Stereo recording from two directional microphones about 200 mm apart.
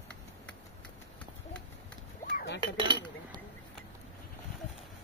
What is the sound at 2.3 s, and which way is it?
Dishes, 60° left (ahead or behind).